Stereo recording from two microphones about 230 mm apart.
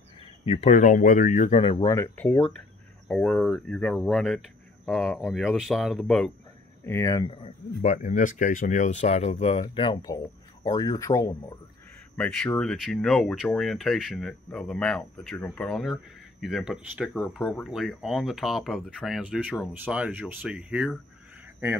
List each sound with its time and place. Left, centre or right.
0.5 s speech: left; by 6.3 s centre
6.9 s speech: centre